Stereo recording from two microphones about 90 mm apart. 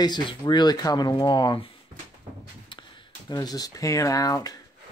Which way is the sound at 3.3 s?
45° left (ahead or behind).